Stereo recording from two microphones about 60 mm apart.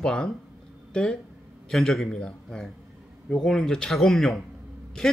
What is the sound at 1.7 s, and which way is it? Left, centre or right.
A man's voice, centre.